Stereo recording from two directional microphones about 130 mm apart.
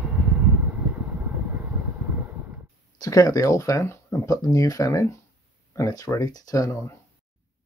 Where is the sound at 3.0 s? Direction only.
25° left (ahead or behind).